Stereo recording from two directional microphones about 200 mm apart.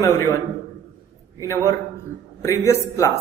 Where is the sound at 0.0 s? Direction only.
10° left (ahead or behind).